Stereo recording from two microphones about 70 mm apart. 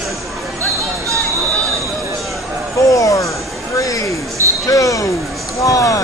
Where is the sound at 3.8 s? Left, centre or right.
Left.